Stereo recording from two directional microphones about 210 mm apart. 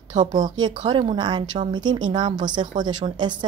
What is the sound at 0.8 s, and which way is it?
Speech, 20° right (ahead or behind).